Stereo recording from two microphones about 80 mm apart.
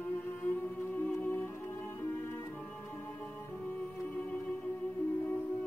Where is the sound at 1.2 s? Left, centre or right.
Left.